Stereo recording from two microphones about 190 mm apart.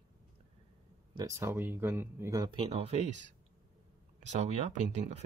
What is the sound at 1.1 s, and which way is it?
Speech, 15° right (ahead or behind).